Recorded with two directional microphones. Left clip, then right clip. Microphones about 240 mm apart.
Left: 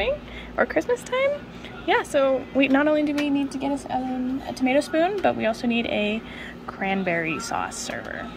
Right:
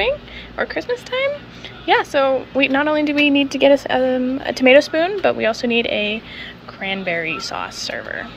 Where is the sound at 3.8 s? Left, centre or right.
Centre.